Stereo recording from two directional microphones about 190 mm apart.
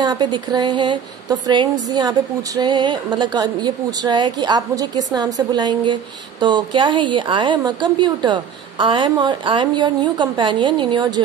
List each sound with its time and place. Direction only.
0.0 s speech: 20° right (ahead or behind)